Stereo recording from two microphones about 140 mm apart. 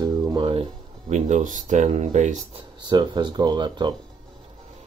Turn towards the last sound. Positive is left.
turn(degrees=-35)  # may be behind; listen again after turning